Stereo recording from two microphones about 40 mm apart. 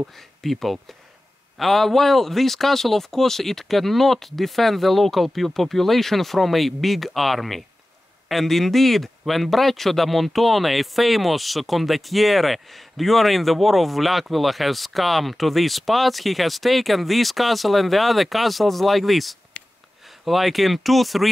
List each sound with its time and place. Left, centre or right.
0.4 s speech: centre
19.6 s a sound: left
20.2 s speech: centre